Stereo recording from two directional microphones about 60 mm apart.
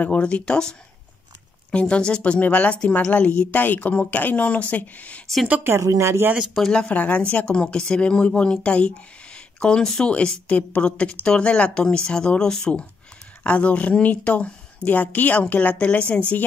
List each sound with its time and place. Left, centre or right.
0.0 s speech: left
5.7 s speech: right
6.6 s speech: centre
6.9 s speech: left